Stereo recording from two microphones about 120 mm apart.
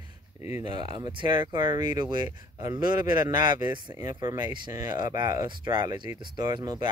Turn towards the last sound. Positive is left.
turn(degrees=-35)  # may be behind; listen again after turning